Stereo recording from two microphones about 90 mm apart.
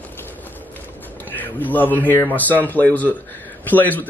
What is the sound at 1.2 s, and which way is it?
A man's voice, 20° left (ahead or behind).